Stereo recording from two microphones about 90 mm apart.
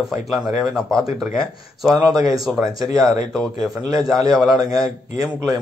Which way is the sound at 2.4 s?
Centre (ahead or behind).